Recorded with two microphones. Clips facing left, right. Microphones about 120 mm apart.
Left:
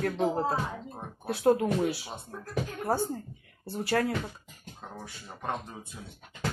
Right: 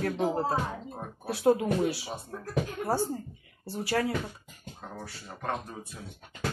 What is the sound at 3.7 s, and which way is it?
Speech, 5° right (ahead or behind).